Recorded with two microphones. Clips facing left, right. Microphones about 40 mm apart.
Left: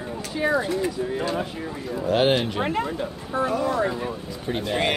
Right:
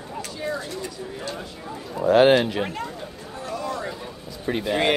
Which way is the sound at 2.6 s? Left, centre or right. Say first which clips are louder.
Left 4 dB; left.